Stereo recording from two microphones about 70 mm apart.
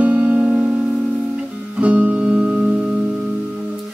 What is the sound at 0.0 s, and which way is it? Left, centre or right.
Music, centre.